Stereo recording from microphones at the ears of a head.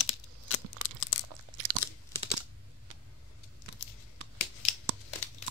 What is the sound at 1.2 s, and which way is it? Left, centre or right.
Crunch, right.